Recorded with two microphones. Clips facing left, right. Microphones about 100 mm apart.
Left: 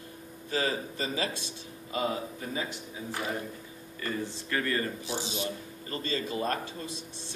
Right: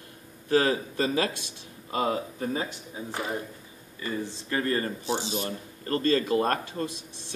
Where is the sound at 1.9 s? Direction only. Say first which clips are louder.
Right 4 dB; 45° right (ahead or behind).